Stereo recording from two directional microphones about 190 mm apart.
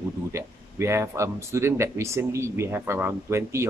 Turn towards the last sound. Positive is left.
turn(degrees=-15)  # may be behind; listen again after turning